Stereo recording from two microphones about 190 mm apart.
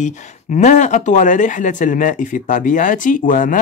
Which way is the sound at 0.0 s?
40° left (ahead or behind).